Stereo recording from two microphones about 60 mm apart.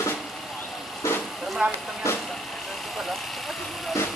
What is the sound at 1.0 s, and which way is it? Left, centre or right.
Vehicle, left.